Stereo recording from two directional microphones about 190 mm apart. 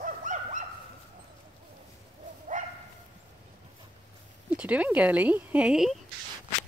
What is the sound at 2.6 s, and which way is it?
Bow-wow, 40° right (ahead or behind).